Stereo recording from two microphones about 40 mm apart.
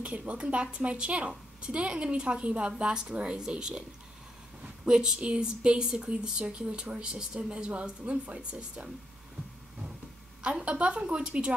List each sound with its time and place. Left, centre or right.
0.0 s a woman's voice: right
10.4 s a woman's voice: right